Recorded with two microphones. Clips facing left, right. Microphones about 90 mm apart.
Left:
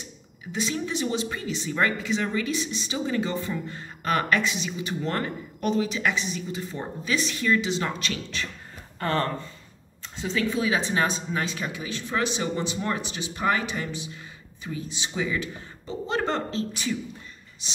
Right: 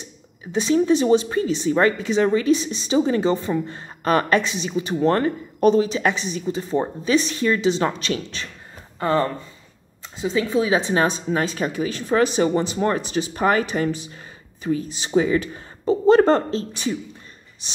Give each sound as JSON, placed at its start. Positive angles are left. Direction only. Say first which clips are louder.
{"t": 0.6, "sound": "speech", "louder": "right 11 dB", "side_deg": -30}
{"t": 9.0, "sound": "speech", "louder": "right 6 dB", "side_deg": -15}
{"t": 10.3, "sound": "speech", "louder": "right 5 dB", "side_deg": -25}
{"t": 11.1, "sound": "speech", "louder": "right 6 dB", "side_deg": -45}